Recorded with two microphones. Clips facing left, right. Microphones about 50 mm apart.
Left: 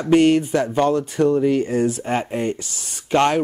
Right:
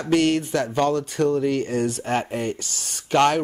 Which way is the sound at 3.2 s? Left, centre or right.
Left.